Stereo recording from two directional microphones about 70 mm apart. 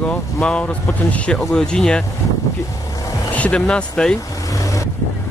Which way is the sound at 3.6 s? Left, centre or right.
Centre.